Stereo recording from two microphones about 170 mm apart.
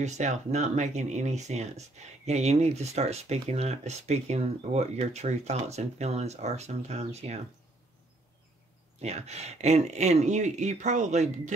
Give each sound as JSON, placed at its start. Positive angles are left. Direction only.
{"t": 0.0, "sound": "speech", "side_deg": -45}
{"t": 9.0, "sound": "speech", "side_deg": -40}